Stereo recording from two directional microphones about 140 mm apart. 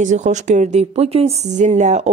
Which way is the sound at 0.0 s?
60° right (ahead or behind).